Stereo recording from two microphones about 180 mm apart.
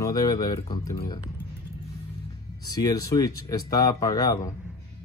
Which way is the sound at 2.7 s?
20° left (ahead or behind).